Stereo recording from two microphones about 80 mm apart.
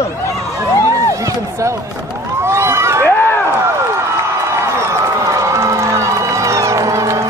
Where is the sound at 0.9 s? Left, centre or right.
Right.